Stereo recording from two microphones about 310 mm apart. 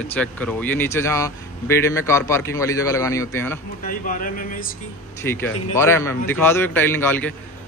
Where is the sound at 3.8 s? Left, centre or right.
Left.